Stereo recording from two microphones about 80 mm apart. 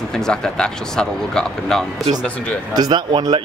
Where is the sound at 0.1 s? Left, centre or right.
Centre.